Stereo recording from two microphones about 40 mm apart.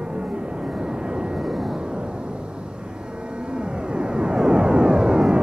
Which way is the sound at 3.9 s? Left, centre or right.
Right.